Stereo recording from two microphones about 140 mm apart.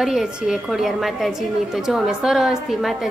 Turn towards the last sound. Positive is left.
turn(degrees=0)  # may be behind; listen again after turning